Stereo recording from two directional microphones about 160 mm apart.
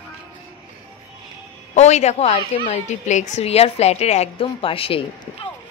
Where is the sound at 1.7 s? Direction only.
45° left (ahead or behind).